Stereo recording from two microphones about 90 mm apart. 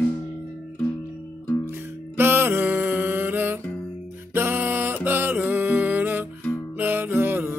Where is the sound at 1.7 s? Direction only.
25° right (ahead or behind).